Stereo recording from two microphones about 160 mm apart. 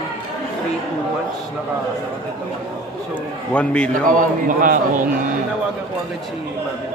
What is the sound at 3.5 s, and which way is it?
Speech, 5° left (ahead or behind).